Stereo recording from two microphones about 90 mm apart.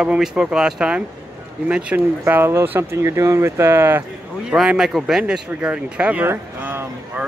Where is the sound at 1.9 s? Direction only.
25° right (ahead or behind).